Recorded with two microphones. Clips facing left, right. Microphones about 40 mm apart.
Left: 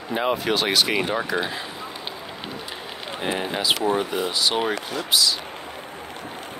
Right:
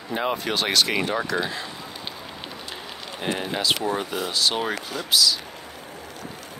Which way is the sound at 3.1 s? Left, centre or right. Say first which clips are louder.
Left 1 dB; centre.